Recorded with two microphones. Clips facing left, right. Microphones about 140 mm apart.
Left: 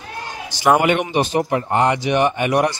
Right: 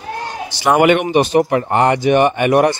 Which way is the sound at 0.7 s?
65° right (ahead or behind).